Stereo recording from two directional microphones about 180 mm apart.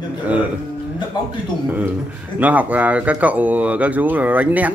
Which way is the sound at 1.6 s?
10° right (ahead or behind).